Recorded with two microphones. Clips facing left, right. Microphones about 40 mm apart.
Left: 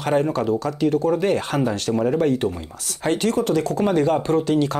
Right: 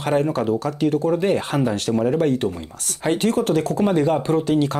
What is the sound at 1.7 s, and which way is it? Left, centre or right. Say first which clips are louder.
Speech: right 1 dB; centre.